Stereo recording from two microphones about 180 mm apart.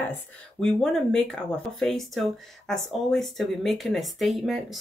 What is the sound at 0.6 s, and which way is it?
Speech, centre (ahead or behind).